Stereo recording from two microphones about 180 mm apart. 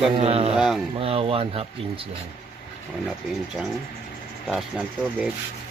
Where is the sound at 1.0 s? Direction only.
30° right (ahead or behind).